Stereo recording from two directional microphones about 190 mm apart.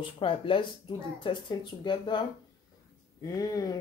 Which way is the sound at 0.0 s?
25° left (ahead or behind).